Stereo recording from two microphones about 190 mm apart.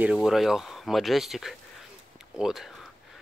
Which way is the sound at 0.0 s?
Centre (ahead or behind).